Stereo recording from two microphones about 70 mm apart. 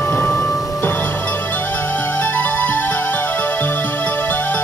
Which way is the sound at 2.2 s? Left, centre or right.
Left.